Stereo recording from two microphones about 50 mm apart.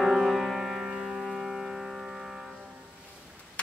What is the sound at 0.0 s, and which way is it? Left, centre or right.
Music, centre.